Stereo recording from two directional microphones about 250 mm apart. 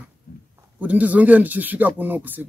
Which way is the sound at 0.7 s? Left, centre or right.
Centre.